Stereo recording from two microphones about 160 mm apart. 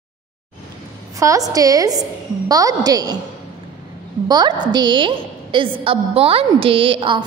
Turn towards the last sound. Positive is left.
turn(degrees=-35)  # may be behind; listen again after turning